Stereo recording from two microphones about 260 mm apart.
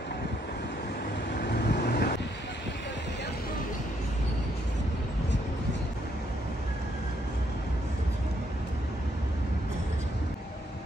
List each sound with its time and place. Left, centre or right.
1.4 s vehicle: left